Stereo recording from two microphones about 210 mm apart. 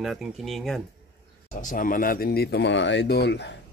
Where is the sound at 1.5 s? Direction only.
40° left (ahead or behind).